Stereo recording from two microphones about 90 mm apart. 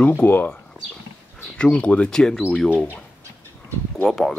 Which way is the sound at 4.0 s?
Centre (ahead or behind).